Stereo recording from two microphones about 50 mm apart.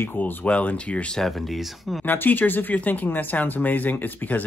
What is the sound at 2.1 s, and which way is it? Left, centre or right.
Speech, left.